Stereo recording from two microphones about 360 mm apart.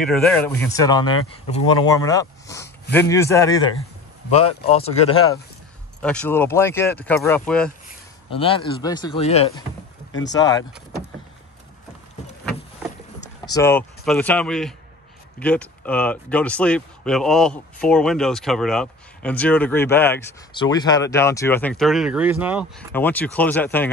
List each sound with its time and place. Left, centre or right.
0.0 s speech: centre
6.0 s speech: centre
8.3 s speech: centre
13.2 s speech: centre